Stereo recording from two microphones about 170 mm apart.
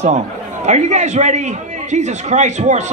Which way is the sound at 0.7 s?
40° right (ahead or behind).